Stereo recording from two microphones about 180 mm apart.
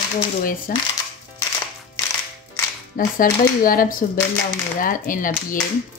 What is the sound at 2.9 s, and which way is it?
Speech, 50° left (ahead or behind).